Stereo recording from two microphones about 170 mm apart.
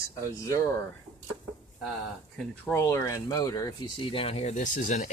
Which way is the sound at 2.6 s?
15° left (ahead or behind).